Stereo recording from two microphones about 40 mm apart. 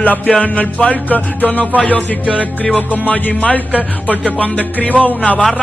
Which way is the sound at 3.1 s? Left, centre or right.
Left.